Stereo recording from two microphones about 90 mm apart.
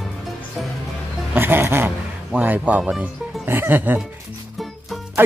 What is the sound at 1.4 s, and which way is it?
Speech, 25° right (ahead or behind).